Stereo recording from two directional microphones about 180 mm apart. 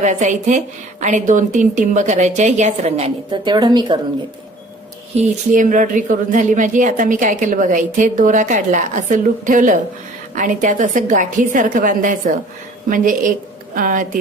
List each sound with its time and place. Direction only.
0.0 s a woman's voice: 40° right (ahead or behind)
3.3 s a woman's voice: 25° right (ahead or behind)
5.1 s a woman's voice: 45° right (ahead or behind)